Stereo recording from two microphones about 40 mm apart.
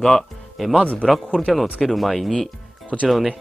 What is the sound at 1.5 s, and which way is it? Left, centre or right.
Speech, centre.